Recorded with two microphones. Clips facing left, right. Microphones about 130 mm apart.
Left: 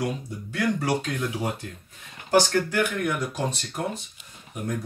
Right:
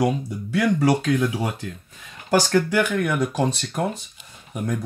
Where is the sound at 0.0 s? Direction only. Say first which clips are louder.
Right 7 dB; 90° right.